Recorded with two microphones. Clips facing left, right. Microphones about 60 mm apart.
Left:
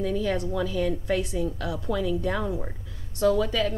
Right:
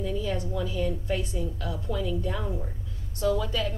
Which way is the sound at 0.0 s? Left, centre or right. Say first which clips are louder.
Left 4 dB; left.